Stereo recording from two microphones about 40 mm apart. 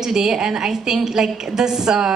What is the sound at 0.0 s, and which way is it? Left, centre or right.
A woman's voice, centre.